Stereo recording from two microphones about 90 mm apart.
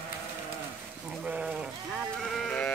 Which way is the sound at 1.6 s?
Centre (ahead or behind).